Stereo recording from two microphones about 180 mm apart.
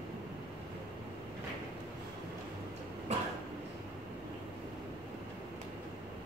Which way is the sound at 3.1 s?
40° right (ahead or behind).